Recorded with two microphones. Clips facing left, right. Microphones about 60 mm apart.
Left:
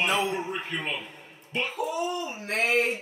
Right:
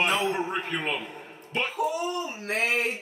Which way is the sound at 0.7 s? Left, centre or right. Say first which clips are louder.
Right 2 dB; centre.